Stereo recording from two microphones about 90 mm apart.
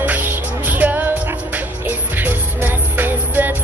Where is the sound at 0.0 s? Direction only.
20° right (ahead or behind).